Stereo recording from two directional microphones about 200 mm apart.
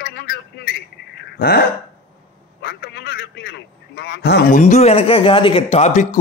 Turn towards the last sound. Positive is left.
turn(degrees=35)  # may be behind; listen again after turning